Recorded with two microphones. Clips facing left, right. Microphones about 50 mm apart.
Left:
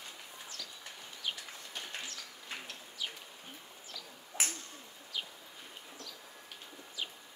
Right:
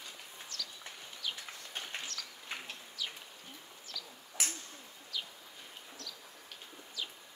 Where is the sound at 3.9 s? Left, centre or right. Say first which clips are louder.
Right 3 dB; left.